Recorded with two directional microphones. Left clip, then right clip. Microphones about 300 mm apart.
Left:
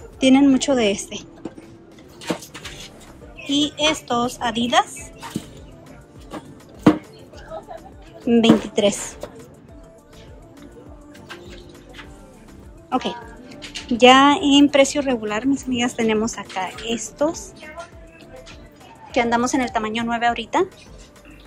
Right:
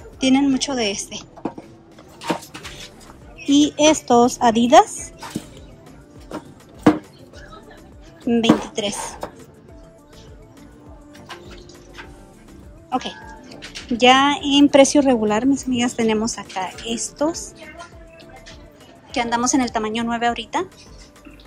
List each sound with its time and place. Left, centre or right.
0.2 s a woman's voice: centre
3.4 s a woman's voice: centre
6.8 s a sound: centre
12.9 s music: centre
13.9 s a woman's voice: centre
19.1 s a woman's voice: centre